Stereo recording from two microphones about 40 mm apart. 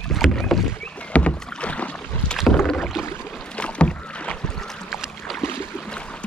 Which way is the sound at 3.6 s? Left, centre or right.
Left.